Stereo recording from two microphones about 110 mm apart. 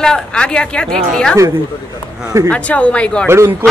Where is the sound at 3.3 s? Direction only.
20° right (ahead or behind).